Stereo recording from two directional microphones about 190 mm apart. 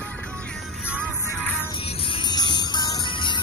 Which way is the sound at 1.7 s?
30° left (ahead or behind).